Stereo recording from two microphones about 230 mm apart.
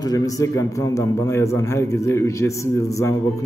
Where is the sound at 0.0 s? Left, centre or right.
Centre.